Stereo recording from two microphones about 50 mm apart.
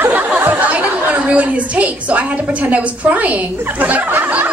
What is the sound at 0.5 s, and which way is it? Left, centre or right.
A woman's voice, right.